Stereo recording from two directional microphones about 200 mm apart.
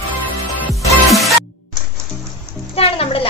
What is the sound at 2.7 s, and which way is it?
Music, 30° left (ahead or behind).